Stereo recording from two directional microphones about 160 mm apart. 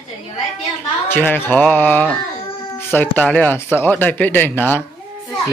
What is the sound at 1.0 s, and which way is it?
Speech, 10° left (ahead or behind).